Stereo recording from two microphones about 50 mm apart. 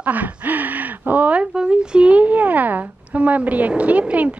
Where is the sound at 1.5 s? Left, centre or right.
Centre.